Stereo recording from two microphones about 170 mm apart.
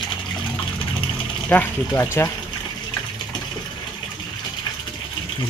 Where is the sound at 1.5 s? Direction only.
10° left (ahead or behind).